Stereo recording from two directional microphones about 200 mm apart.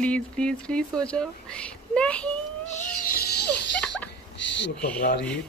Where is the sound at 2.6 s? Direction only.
35° left (ahead or behind).